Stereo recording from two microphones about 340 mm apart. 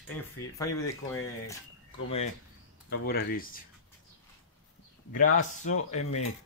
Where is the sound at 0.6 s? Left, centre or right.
Centre.